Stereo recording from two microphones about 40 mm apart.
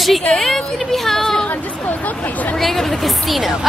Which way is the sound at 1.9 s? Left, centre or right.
Left.